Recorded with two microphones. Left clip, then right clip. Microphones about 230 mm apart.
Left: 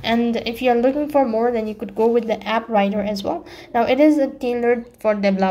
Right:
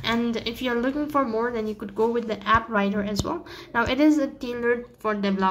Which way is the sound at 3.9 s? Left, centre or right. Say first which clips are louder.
Left 5 dB; right.